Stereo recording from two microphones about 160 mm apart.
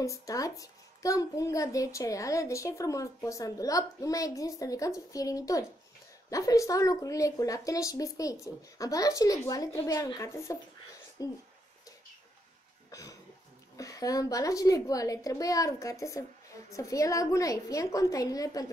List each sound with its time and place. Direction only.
0.0 s a child's voice: 20° left (ahead or behind)
12.9 s a sound: 20° left (ahead or behind)
13.7 s a child's voice: 20° left (ahead or behind)